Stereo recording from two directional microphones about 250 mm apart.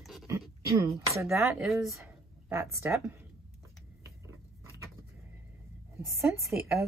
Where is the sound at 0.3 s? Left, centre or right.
Centre.